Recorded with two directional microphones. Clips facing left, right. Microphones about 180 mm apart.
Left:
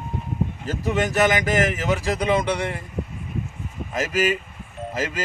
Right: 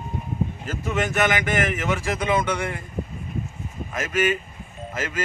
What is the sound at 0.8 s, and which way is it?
A man's voice, 35° left (ahead or behind).